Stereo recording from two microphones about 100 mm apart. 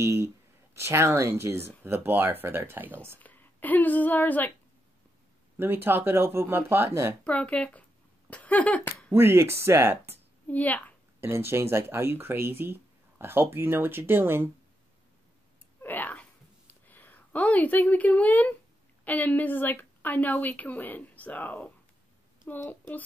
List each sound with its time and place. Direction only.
0.0 s speech: 25° right (ahead or behind)
3.2 s a woman's voice: 15° left (ahead or behind)
5.6 s speech: 20° right (ahead or behind)
7.2 s speech: 15° left (ahead or behind)
9.1 s speech: 25° right (ahead or behind)
10.4 s a woman's voice: 15° left (ahead or behind)
11.1 s speech: 25° right (ahead or behind)
15.8 s a sound: 20° left (ahead or behind)
19.0 s speech: 15° left (ahead or behind)